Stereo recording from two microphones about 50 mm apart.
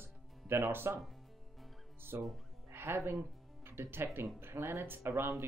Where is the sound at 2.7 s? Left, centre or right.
Right.